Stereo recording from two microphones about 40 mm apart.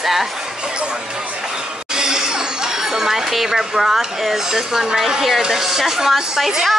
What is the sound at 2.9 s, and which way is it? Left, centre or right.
Speech, centre.